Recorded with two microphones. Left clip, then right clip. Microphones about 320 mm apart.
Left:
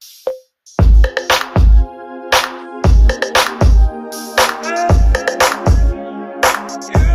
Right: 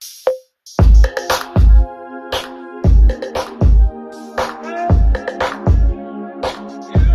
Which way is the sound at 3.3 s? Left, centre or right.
Left.